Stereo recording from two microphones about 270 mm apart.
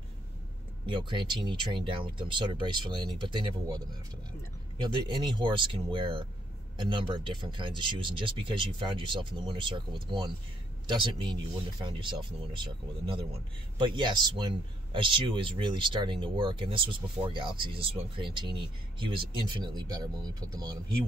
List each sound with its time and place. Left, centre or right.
0.8 s speech: centre